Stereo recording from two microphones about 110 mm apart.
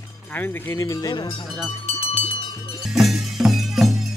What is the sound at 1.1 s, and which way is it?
Speech, 45° left (ahead or behind).